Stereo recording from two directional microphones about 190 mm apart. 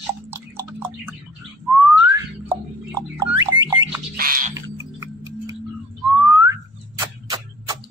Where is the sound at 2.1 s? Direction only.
15° right (ahead or behind).